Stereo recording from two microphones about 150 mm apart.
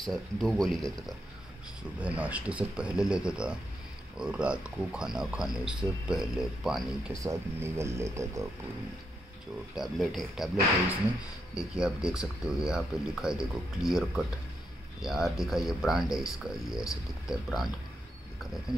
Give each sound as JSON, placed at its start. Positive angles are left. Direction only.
{"t": 0.0, "sound": "speech", "side_deg": 0}
{"t": 7.2, "sound": "speech", "side_deg": -15}
{"t": 9.8, "sound": "speech", "side_deg": 0}